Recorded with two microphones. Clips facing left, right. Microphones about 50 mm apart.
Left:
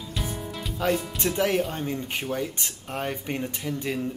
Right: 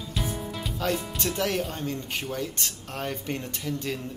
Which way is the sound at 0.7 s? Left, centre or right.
Centre.